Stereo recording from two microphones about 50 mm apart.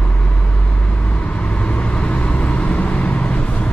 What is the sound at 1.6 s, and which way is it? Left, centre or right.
Vehicle, left.